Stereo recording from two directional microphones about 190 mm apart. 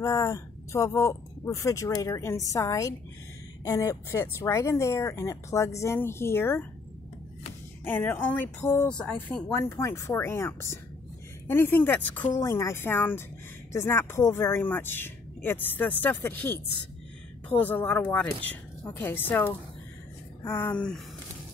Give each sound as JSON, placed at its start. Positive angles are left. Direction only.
{"t": 0.0, "sound": "a woman's voice", "side_deg": 15}
{"t": 7.8, "sound": "a woman's voice", "side_deg": 10}